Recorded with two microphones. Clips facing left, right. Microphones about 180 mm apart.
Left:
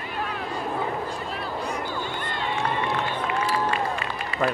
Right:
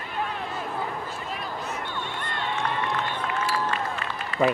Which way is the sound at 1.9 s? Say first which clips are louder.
Left 2 dB; centre (ahead or behind).